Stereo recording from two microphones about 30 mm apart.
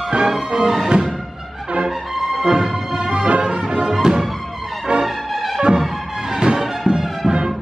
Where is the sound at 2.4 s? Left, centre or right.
Right.